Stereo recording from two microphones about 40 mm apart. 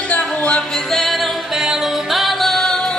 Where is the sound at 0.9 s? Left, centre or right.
Centre.